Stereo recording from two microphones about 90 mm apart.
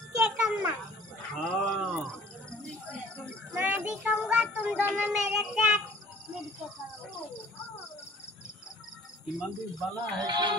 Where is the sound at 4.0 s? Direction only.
10° right (ahead or behind).